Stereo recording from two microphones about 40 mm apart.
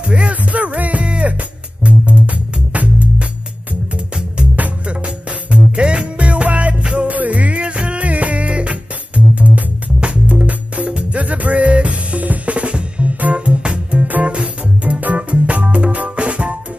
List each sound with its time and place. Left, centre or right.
0.1 s music: right
0.5 s music: right
4.8 s music: right
7.1 s music: right
11.1 s drum: right
13.2 s music: right